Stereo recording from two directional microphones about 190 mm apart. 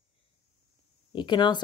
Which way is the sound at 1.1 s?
25° left (ahead or behind).